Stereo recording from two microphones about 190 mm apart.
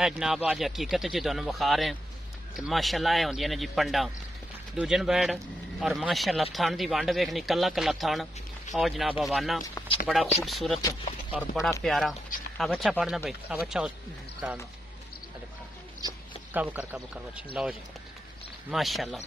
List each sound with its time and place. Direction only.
0.0 s speech: centre (ahead or behind)
16.0 s a sound: 20° right (ahead or behind)
16.5 s speech: 10° right (ahead or behind)
18.7 s speech: centre (ahead or behind)